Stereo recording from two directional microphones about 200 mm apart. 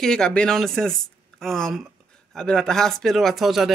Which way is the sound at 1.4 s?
Centre (ahead or behind).